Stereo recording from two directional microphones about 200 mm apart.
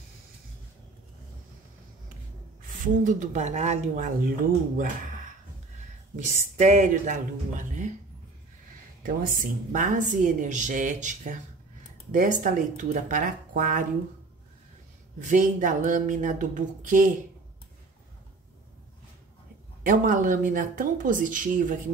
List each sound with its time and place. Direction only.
2.8 s a woman's voice: 40° right (ahead or behind)
9.0 s a woman's voice: 40° right (ahead or behind)
15.1 s a woman's voice: 40° right (ahead or behind)
19.8 s a woman's voice: 40° right (ahead or behind)